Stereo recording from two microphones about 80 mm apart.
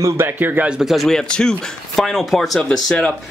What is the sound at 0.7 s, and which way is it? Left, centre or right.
Speech, centre.